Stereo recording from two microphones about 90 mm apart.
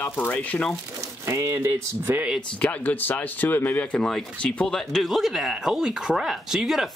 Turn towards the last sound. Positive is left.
turn(degrees=-5)  # may be behind; listen again after turning